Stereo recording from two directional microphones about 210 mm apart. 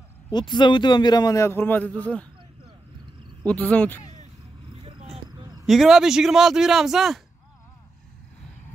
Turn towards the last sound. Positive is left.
turn(degrees=0)  # may be behind; listen again after turning